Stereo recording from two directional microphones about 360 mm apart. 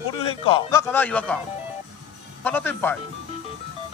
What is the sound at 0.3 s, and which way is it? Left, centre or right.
Speech, centre.